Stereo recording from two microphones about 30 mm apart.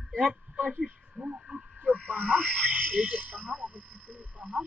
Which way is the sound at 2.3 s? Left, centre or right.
Right.